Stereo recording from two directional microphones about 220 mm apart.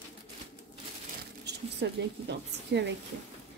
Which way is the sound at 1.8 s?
50° right (ahead or behind).